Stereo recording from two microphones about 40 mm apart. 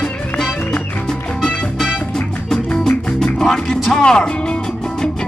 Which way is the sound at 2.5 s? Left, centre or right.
Centre.